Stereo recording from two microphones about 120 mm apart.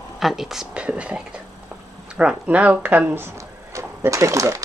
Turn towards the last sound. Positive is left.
turn(degrees=-25)  # may be behind; listen again after turning